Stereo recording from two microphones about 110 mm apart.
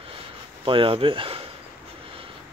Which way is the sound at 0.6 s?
55° right (ahead or behind).